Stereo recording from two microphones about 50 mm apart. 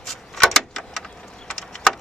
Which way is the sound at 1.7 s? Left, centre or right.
Centre.